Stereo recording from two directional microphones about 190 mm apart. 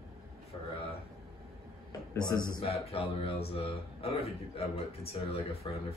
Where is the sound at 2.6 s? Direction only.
30° left (ahead or behind).